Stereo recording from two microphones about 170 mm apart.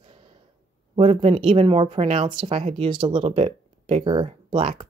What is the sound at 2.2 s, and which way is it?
Speech, 25° right (ahead or behind).